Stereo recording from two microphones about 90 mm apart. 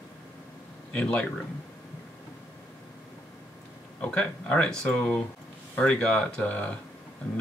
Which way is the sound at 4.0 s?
15° left (ahead or behind).